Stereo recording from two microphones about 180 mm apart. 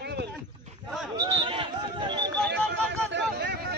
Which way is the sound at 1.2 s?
30° right (ahead or behind).